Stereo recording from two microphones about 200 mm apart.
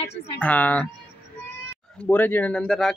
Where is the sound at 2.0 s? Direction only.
10° left (ahead or behind).